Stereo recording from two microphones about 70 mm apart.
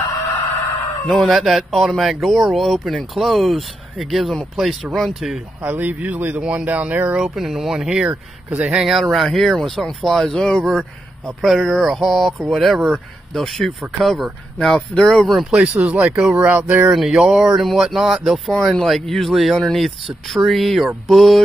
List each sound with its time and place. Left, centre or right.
1.0 s speech: centre
5.6 s speech: right
7.2 s speech: centre
8.5 s speech: right
8.8 s speech: centre
15.5 s speech: centre
16.3 s speech: right
16.9 s speech: centre